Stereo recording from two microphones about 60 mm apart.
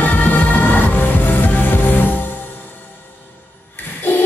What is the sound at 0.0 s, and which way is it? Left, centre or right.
Music, left.